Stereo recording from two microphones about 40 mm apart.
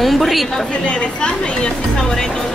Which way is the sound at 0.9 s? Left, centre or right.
Left.